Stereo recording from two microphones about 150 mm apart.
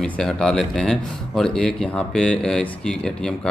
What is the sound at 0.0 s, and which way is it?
Speech, 5° left (ahead or behind).